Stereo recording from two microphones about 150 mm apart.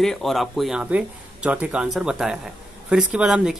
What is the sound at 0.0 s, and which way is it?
Speech, centre (ahead or behind).